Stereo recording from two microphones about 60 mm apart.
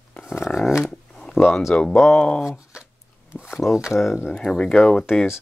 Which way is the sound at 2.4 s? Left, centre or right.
Centre.